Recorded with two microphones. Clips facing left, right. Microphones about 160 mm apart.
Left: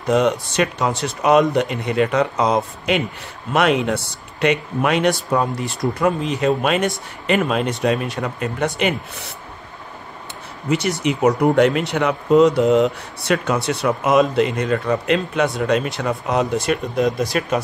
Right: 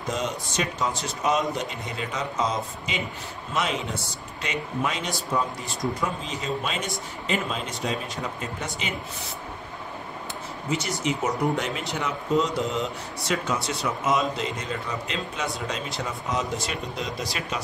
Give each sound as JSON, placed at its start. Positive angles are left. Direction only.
{"t": 0.1, "sound": "speech", "side_deg": 65}
{"t": 11.0, "sound": "speech", "side_deg": 65}